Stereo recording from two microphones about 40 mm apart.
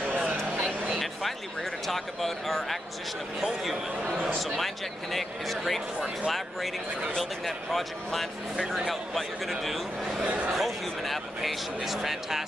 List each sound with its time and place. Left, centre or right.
1.9 s speech: centre
5.1 s speech: centre
10.2 s speech: right
10.5 s speech: centre